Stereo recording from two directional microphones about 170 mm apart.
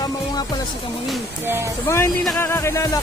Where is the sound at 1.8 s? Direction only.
15° left (ahead or behind).